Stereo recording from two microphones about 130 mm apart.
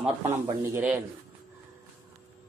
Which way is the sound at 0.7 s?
10° right (ahead or behind).